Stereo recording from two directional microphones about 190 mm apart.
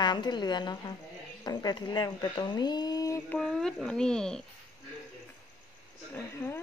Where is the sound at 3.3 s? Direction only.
5° left (ahead or behind).